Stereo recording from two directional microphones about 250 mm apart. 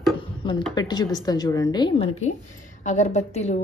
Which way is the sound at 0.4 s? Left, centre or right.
Centre.